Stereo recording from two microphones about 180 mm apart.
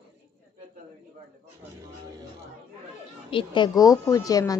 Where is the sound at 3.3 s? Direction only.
25° left (ahead or behind).